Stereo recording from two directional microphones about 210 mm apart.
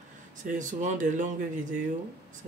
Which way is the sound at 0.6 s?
35° right (ahead or behind).